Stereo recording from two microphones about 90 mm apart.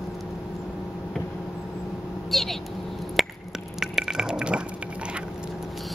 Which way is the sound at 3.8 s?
5° right (ahead or behind).